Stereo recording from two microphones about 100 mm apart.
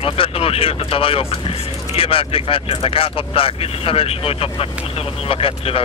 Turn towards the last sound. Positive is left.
turn(degrees=70)  # may be behind; listen again after turning